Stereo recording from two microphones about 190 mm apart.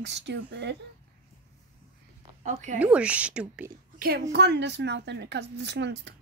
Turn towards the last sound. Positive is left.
turn(degrees=-65)  # may be behind; listen again after turning